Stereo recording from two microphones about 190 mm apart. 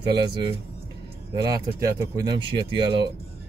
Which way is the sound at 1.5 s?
20° right (ahead or behind).